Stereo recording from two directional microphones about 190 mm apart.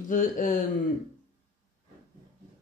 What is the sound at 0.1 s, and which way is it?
Speech, 45° left (ahead or behind).